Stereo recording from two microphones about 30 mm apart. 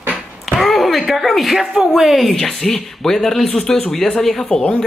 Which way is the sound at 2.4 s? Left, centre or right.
Centre.